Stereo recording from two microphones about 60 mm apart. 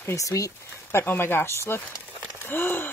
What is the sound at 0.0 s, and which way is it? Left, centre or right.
Speech, left.